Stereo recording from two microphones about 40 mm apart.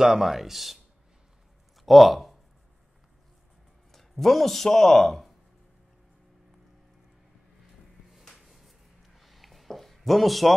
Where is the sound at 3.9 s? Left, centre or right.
Centre.